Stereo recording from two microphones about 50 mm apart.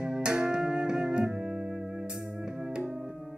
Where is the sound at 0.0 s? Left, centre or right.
Centre.